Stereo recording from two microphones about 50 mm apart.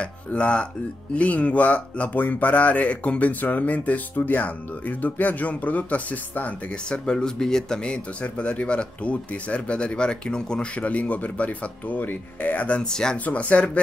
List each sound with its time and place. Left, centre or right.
0.0 s speech: left
6.7 s speech: centre
12.9 s speech: centre
13.2 s speech: left